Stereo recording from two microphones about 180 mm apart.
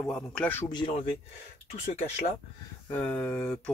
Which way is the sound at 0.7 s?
30° left (ahead or behind).